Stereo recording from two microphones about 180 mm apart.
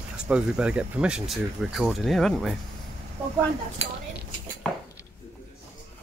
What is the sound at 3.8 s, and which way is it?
Speech, 35° right (ahead or behind).